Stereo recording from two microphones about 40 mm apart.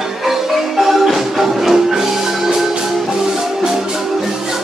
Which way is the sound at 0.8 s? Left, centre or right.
Centre.